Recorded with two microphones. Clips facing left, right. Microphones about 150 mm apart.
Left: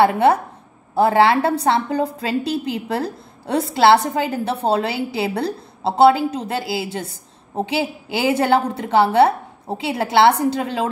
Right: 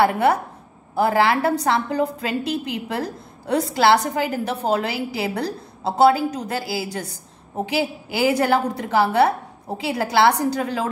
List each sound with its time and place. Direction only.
0.0 s a woman's voice: 25° left (ahead or behind)